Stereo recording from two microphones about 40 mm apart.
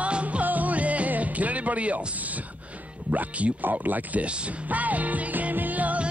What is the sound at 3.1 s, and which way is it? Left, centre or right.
Speech, right.